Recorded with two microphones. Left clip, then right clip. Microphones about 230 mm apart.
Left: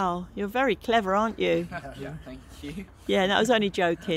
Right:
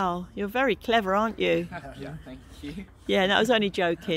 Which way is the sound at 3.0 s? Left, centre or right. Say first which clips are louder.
Right 1 dB; centre.